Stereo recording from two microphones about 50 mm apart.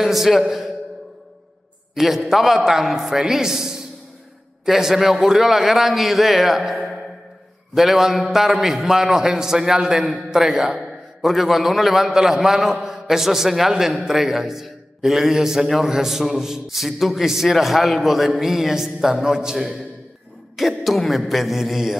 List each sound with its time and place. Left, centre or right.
0.0 s a man's voice: centre
2.0 s a man's voice: centre